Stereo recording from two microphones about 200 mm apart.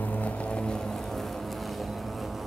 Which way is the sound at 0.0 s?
5° left (ahead or behind).